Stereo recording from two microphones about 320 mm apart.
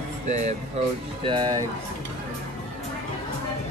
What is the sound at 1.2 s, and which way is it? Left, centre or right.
Cutlery, centre.